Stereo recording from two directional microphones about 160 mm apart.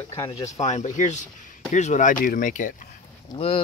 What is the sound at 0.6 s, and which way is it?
Speech, 45° left (ahead or behind).